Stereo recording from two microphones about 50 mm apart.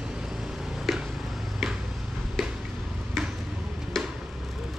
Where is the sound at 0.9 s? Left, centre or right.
Centre.